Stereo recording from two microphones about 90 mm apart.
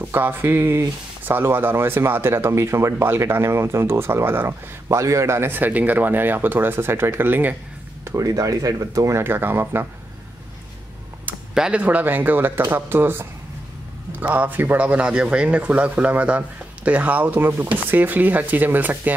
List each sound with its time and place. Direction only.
0.0 s speech: 25° right (ahead or behind)
8.0 s speech: 40° right (ahead or behind)
9.2 s speech: 25° right (ahead or behind)
11.5 s speech: 10° right (ahead or behind)